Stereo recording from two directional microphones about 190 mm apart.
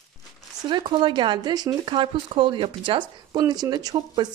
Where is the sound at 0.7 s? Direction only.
25° right (ahead or behind).